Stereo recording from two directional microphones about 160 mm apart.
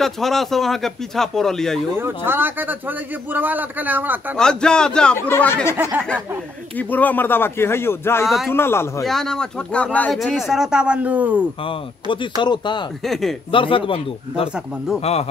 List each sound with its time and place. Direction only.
0.0 s speech: centre (ahead or behind)
2.0 s a man's voice: 15° right (ahead or behind)
4.4 s speech: 5° left (ahead or behind)
6.8 s speech: 10° left (ahead or behind)
9.0 s speech: 5° left (ahead or behind)
11.6 s speech: 30° left (ahead or behind)
13.0 s speech: centre (ahead or behind)
13.5 s speech: 35° left (ahead or behind)